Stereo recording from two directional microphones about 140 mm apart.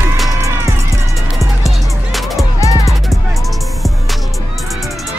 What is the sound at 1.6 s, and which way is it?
Music, centre (ahead or behind).